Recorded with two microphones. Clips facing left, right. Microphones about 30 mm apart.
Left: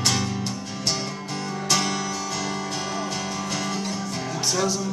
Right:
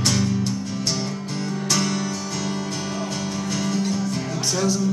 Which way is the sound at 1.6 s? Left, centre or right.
Centre.